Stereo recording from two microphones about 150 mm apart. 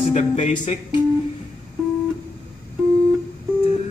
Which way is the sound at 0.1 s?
50° left (ahead or behind).